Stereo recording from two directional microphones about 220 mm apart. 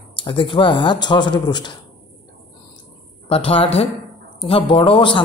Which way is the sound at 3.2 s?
25° left (ahead or behind).